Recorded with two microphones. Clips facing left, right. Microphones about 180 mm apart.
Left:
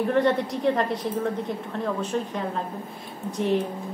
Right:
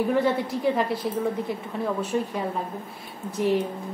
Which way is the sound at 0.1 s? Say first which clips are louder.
Left 1 dB; 5° right (ahead or behind).